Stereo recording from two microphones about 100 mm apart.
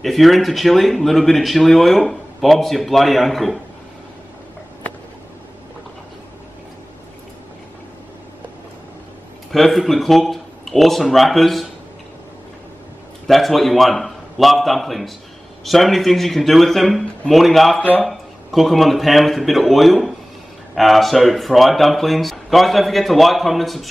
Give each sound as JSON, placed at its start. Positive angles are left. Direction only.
{"t": 0.0, "sound": "speech", "side_deg": 0}
{"t": 9.5, "sound": "speech", "side_deg": 0}
{"t": 13.3, "sound": "speech", "side_deg": 0}
{"t": 17.7, "sound": "speech", "side_deg": 15}
{"t": 18.0, "sound": "speech", "side_deg": 0}